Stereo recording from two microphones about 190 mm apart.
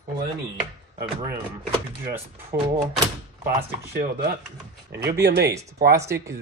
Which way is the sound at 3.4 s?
55° right (ahead or behind).